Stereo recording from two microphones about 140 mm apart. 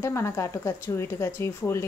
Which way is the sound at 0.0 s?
20° left (ahead or behind).